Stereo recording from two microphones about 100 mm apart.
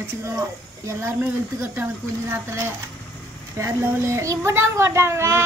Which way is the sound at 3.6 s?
30° right (ahead or behind).